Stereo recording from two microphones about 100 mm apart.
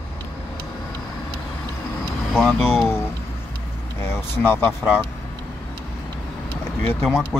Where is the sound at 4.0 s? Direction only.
25° left (ahead or behind).